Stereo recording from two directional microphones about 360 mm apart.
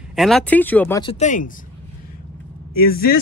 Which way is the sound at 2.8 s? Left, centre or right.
Left.